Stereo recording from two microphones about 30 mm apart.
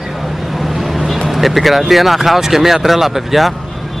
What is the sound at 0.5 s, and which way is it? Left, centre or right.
Vehicle, centre.